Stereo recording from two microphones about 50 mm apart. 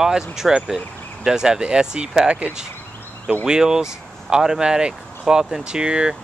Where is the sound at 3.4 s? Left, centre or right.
Centre.